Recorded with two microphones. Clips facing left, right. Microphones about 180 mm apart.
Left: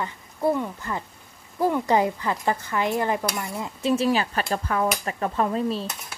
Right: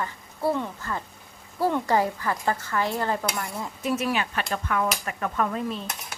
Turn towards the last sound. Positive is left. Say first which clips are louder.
# left 3 dB
turn(degrees=30)  # may be behind; listen again after turning